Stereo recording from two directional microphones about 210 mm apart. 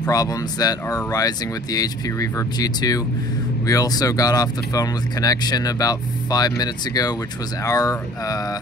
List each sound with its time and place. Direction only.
0.1 s speech: 15° left (ahead or behind)